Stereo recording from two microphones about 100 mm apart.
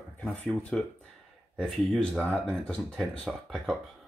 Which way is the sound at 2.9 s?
Centre (ahead or behind).